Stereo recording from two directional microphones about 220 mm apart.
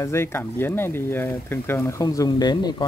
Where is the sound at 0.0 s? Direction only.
10° left (ahead or behind).